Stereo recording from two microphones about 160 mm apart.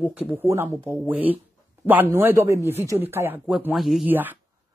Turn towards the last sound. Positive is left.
turn(degrees=-10)  # may be behind; listen again after turning